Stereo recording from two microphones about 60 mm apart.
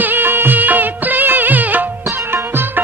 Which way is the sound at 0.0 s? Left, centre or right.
Right.